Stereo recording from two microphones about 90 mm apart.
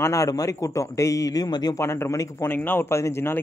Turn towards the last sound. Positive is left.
turn(degrees=25)  # may be behind; listen again after turning